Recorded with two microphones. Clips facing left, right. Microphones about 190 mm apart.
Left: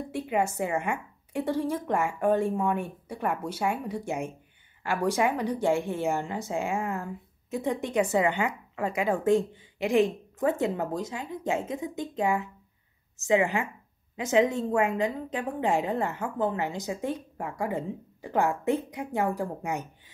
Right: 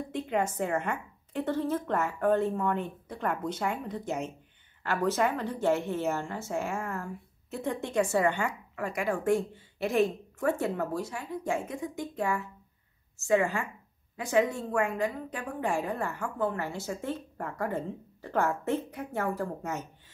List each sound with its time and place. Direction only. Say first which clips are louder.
0.1 s a woman's voice: left 2 dB; 10° left (ahead or behind)